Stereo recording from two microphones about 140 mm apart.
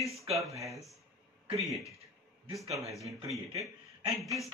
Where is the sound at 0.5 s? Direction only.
20° right (ahead or behind).